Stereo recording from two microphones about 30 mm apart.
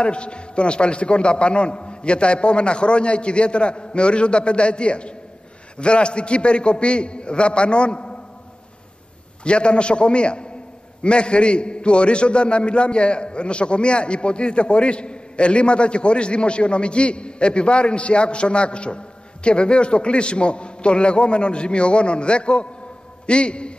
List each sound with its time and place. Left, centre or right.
0.0 s a man's voice: left
9.4 s a man's voice: left